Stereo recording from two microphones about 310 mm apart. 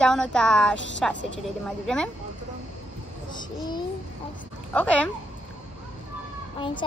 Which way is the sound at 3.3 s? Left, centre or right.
Centre.